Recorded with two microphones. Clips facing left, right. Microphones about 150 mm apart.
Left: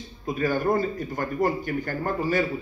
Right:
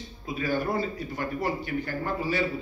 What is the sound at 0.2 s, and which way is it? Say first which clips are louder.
Speech: left 4 dB; 45° left (ahead or behind).